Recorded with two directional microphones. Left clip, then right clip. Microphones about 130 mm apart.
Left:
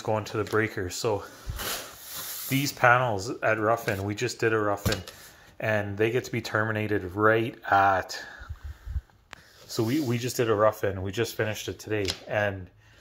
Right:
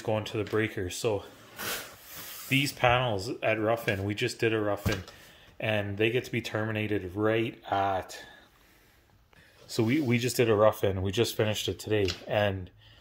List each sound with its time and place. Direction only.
0.0 s speech: 10° left (ahead or behind)
2.6 s speech: 10° left (ahead or behind)
4.8 s speech: 80° left
5.6 s speech: 10° left (ahead or behind)
9.8 s speech: 15° right (ahead or behind); by 12.5 s 35° right (ahead or behind)